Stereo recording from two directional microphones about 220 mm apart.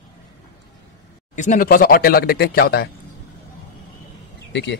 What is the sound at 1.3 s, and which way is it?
Speech, 35° left (ahead or behind).